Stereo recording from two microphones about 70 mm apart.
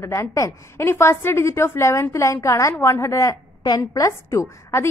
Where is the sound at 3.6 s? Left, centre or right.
Left.